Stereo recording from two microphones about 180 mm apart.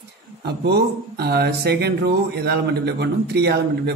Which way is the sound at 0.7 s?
65° right (ahead or behind).